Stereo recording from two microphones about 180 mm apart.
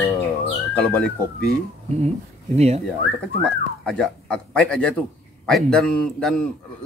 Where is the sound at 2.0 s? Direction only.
40° right (ahead or behind).